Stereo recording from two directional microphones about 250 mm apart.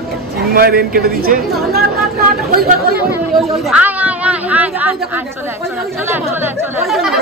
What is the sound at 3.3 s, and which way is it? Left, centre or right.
Speech, centre.